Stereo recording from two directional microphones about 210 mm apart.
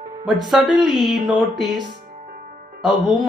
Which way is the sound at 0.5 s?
Centre (ahead or behind).